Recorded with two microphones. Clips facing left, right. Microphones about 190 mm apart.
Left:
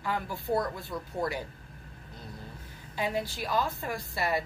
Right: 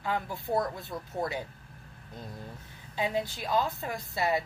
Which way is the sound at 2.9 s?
20° right (ahead or behind).